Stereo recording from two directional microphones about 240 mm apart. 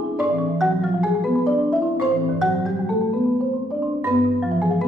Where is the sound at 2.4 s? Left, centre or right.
Centre.